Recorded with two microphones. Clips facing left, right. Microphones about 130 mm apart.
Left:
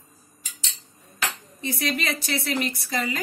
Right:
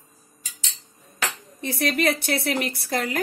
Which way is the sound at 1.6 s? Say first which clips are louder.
Right 4 dB; 60° right (ahead or behind).